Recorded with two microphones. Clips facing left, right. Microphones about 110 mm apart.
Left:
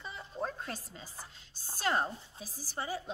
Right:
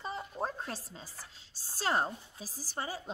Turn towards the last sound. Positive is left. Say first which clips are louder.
# left 1 dB
turn(degrees=-40)  # may be behind; listen again after turning